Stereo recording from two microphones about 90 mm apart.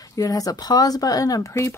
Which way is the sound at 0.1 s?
40° left (ahead or behind).